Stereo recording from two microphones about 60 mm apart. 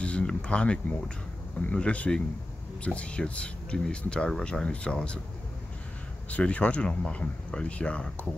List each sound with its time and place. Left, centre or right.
0.0 s speech: centre
6.3 s speech: left